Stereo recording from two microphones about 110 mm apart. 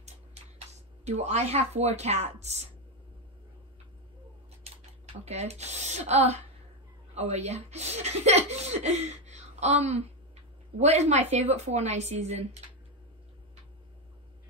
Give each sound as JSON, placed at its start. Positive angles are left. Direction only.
{"t": 1.0, "sound": "speech", "side_deg": -80}
{"t": 5.2, "sound": "speech", "side_deg": -80}